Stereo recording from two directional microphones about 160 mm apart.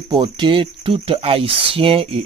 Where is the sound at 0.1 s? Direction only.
30° right (ahead or behind).